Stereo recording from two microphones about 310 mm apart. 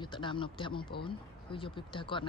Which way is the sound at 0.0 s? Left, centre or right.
Centre.